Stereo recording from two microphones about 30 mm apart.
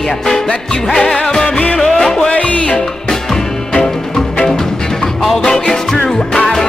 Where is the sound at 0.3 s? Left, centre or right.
Centre.